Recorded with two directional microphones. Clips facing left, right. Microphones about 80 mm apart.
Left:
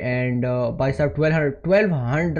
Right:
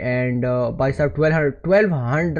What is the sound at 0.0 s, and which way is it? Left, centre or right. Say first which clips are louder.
A man's voice: right 2 dB; right.